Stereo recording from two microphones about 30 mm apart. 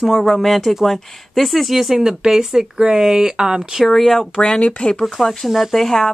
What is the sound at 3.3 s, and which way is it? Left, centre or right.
Speech, right.